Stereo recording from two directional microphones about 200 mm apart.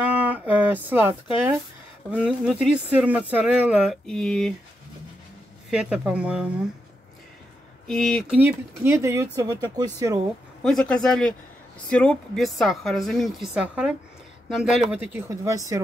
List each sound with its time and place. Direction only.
0.0 s speech: 5° right (ahead or behind)
5.7 s speech: 5° right (ahead or behind)
7.8 s speech: centre (ahead or behind)
8.4 s speech: 10° right (ahead or behind)
10.6 s speech: 5° left (ahead or behind); by 15.8 s 15° right (ahead or behind)